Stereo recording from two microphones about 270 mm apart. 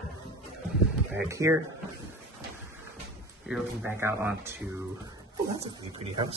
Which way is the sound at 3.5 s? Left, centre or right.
Centre.